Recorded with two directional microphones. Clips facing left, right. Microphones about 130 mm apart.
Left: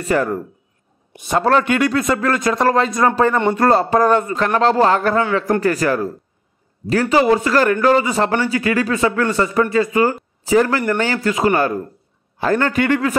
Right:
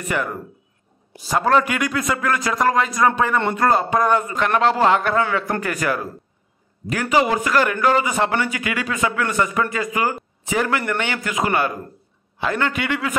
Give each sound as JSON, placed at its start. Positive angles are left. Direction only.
{"t": 0.0, "sound": "a man's voice", "side_deg": 35}